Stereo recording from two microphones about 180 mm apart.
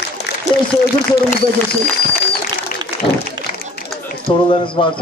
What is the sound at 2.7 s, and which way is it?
Applause, 50° left (ahead or behind).